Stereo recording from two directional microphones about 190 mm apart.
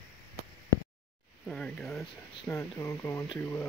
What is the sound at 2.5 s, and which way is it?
Speech, 20° left (ahead or behind).